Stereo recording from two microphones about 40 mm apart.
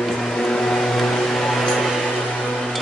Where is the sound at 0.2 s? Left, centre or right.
Centre.